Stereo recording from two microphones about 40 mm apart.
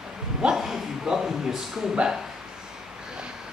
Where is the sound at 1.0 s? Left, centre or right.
Centre.